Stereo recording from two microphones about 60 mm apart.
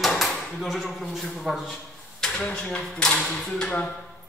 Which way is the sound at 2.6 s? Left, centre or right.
Centre.